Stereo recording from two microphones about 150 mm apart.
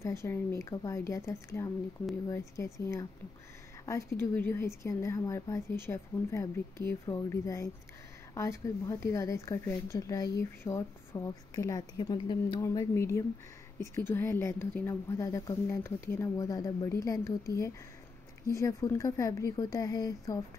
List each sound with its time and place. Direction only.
0.0 s speech: 20° left (ahead or behind)